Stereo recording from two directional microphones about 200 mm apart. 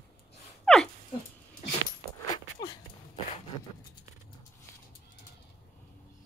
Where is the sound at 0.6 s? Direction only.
5° left (ahead or behind).